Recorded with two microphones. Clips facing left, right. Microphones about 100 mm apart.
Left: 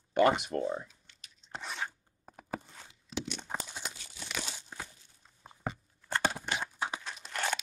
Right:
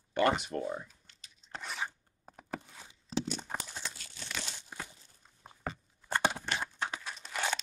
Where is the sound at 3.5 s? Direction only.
10° left (ahead or behind).